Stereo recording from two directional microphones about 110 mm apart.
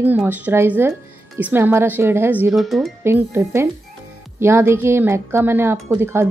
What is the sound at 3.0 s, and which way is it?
Speech, 20° right (ahead or behind).